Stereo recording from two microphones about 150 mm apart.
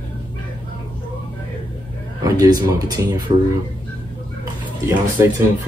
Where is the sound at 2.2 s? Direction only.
25° right (ahead or behind).